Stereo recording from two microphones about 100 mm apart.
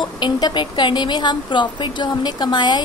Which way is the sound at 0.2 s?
50° left (ahead or behind).